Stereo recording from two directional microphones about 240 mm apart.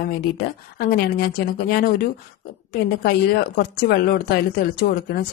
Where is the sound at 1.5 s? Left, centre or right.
Left.